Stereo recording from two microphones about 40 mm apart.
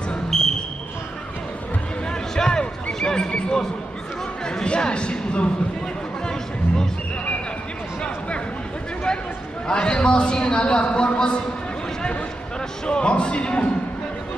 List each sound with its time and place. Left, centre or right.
0.3 s basketball bounce: centre
2.0 s a sound: centre
4.5 s a man's voice: left
9.7 s a man's voice: left
12.8 s a man's voice: left